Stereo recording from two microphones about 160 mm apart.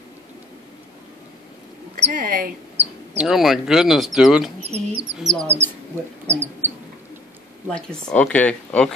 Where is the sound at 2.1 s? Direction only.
60° right (ahead or behind).